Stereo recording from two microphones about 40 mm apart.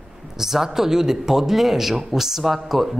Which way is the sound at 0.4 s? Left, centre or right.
Centre.